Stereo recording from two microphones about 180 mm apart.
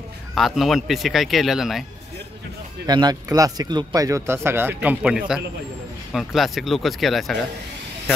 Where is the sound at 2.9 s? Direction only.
20° right (ahead or behind).